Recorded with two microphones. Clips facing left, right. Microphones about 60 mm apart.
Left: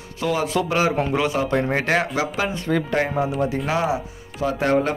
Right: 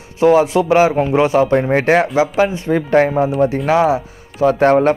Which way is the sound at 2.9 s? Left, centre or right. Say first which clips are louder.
Right 8 dB; right.